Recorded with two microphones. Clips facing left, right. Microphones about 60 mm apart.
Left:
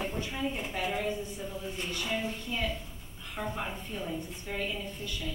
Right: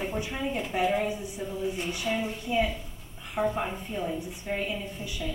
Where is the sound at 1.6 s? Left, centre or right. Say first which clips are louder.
Right 5 dB; centre.